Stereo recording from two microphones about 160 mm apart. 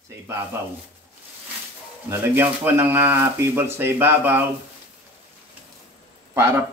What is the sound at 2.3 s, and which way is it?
A man's voice, 10° right (ahead or behind).